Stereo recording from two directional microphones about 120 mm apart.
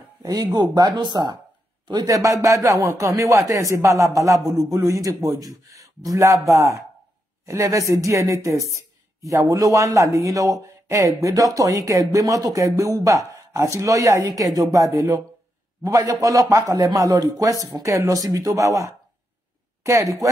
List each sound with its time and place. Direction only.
0.2 s a woman's voice: 35° right (ahead or behind)